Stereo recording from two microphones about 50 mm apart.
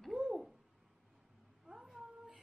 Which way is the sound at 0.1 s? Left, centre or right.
Centre.